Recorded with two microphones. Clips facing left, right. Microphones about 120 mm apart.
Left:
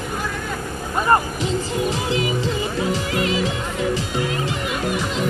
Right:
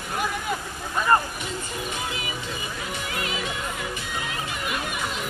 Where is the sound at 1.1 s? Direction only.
30° left (ahead or behind).